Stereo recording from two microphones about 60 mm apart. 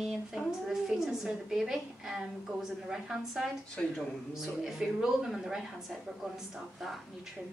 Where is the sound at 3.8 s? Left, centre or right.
Centre.